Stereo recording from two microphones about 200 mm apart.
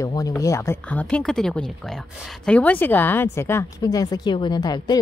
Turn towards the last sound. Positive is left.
turn(degrees=20)  # may be behind; listen again after turning